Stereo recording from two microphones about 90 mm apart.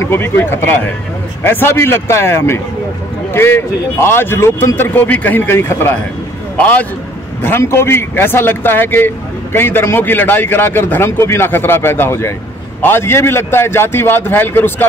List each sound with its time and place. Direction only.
0.0 s a man's voice: 25° left (ahead or behind)